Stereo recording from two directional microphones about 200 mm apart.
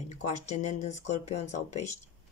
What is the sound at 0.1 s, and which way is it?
Speech, 35° left (ahead or behind).